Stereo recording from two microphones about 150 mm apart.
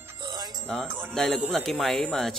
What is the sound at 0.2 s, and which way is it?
Music, 30° right (ahead or behind).